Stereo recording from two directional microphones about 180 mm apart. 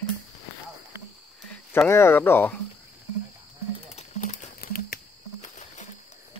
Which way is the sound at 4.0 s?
40° left (ahead or behind).